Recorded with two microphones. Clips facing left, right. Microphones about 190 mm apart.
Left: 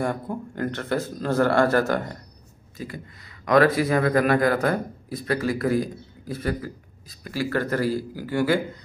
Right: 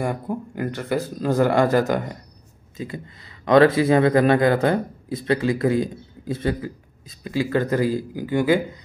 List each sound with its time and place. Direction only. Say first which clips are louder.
0.0 s speech: right 1 dB; 10° right (ahead or behind)